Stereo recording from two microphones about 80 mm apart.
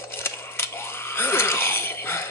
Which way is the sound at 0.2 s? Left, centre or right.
Left.